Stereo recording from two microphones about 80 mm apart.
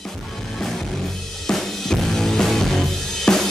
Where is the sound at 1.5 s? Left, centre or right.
Centre.